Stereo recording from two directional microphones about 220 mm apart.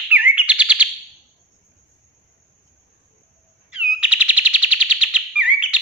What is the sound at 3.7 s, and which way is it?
Bird, 5° right (ahead or behind).